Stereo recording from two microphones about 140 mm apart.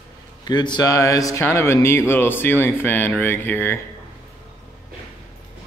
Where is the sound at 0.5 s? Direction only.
30° left (ahead or behind); by 3.8 s 15° left (ahead or behind).